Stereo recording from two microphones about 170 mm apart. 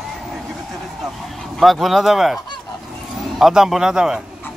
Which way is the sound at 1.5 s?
Centre (ahead or behind).